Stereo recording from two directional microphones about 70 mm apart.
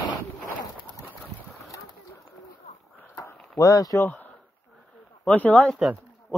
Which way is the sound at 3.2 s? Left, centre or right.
Left.